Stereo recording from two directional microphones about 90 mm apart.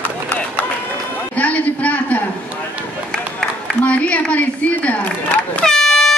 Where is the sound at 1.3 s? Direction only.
15° left (ahead or behind).